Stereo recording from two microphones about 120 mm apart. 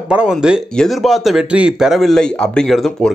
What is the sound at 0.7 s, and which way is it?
Speech, 5° left (ahead or behind).